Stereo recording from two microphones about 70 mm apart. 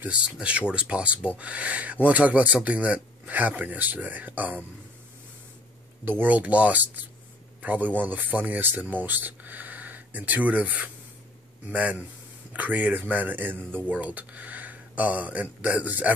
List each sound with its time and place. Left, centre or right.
0.0 s speech: centre
6.0 s speech: right